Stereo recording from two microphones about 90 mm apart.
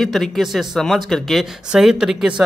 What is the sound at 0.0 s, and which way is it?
Speech, 5° left (ahead or behind).